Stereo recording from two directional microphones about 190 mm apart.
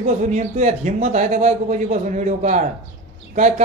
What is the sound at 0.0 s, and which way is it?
A man's voice, 35° right (ahead or behind).